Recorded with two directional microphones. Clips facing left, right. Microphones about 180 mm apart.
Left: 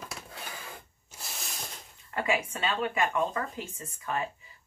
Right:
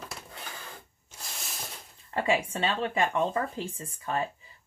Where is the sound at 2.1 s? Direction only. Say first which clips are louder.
Right 2 dB; 30° right (ahead or behind).